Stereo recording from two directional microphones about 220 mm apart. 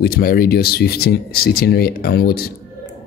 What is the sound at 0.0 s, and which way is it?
A man's voice, 45° left (ahead or behind).